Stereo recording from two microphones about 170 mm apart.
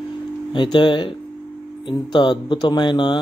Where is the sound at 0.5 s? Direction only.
25° left (ahead or behind).